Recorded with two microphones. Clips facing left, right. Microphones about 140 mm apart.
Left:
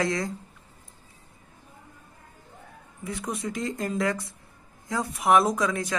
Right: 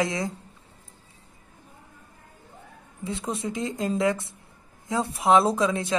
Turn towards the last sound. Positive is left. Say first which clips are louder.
# right 2 dB
turn(degrees=-25)  # may be behind; listen again after turning